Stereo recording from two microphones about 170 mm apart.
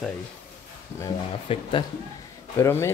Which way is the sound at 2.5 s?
15° left (ahead or behind).